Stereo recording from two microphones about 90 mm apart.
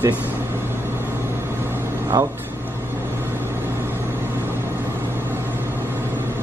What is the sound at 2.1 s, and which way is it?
Speech, 45° right (ahead or behind).